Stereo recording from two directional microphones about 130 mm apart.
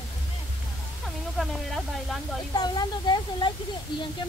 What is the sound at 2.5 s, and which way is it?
Speech, 30° left (ahead or behind).